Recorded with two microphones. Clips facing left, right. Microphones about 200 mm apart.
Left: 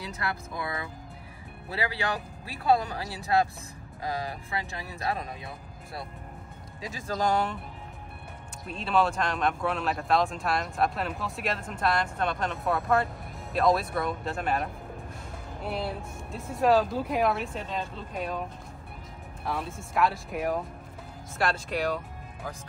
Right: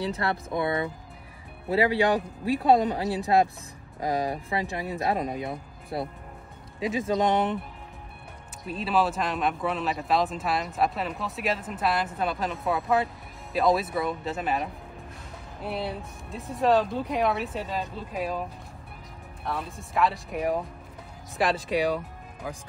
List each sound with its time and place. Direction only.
0.0 s speech: 30° right (ahead or behind)
6.9 s speech: centre (ahead or behind)
8.6 s speech: 5° right (ahead or behind)
19.4 s speech: centre (ahead or behind)